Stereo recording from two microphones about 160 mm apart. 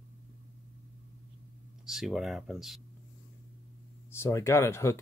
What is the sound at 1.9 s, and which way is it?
Speech, centre (ahead or behind).